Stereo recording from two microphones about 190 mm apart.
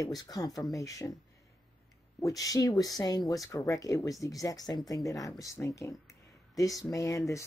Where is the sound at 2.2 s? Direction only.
20° left (ahead or behind).